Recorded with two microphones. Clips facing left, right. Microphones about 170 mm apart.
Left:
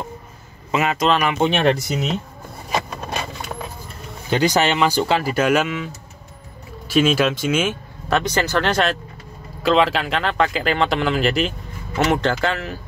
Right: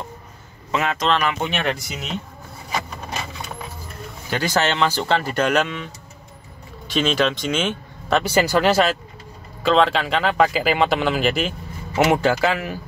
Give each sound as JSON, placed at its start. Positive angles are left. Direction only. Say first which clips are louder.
{"t": 0.7, "sound": "speech", "louder": "left 2 dB", "side_deg": 10}
{"t": 1.3, "sound": "speech", "louder": "left 7 dB", "side_deg": 30}
{"t": 4.3, "sound": "speech", "louder": "left 3 dB", "side_deg": 15}
{"t": 8.2, "sound": "speech", "louder": "right 4 dB", "side_deg": -10}